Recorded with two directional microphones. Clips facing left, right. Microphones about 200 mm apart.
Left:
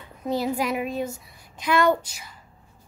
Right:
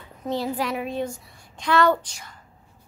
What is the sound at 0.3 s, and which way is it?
Speech, 10° left (ahead or behind).